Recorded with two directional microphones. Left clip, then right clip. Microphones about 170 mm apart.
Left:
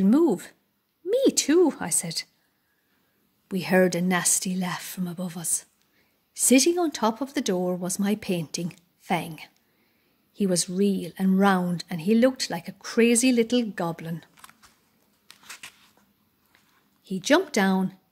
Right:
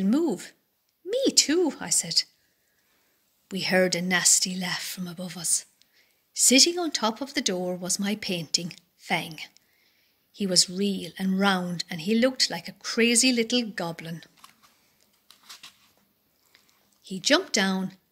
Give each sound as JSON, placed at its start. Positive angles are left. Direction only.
{"t": 0.0, "sound": "speech", "side_deg": 50}
{"t": 3.4, "sound": "speech", "side_deg": 40}
{"t": 15.2, "sound": "a sound", "side_deg": 20}
{"t": 17.0, "sound": "speech", "side_deg": 50}